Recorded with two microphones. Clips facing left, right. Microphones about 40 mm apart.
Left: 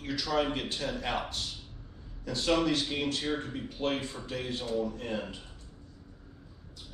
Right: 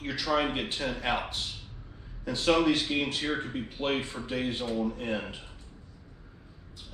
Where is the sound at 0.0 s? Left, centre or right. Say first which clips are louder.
Right 2 dB; right.